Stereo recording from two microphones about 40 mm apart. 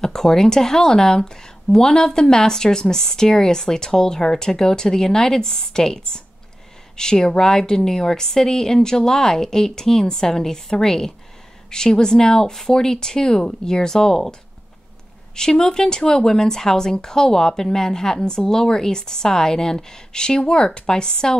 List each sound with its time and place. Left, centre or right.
0.0 s speech: centre
15.3 s speech: centre